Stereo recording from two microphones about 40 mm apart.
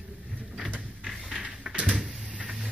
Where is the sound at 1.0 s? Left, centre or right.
Centre.